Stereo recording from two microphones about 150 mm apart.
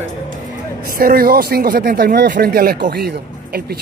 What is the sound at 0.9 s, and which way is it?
Speech, 80° right.